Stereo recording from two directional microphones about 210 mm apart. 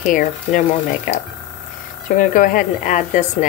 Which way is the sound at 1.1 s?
40° left (ahead or behind).